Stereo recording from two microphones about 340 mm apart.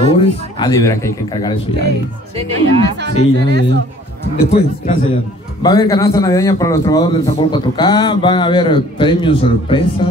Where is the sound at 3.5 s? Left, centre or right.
Right.